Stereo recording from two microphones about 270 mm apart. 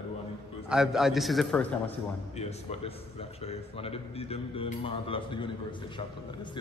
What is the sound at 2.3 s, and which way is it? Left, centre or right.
A man's voice, left.